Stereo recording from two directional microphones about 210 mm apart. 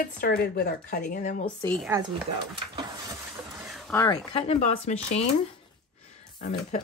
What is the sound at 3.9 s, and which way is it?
Speech, 15° left (ahead or behind).